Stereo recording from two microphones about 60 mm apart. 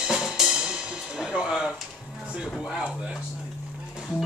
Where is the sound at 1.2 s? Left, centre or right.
Centre.